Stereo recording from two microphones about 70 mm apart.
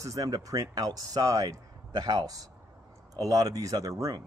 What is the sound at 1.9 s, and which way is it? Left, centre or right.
A man's voice, right.